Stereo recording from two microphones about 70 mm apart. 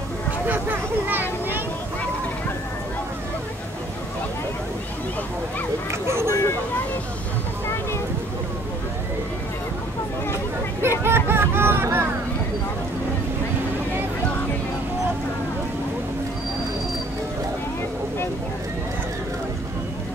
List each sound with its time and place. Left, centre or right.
0.5 s speech: right
5.9 s speech: right
10.3 s hubbub: right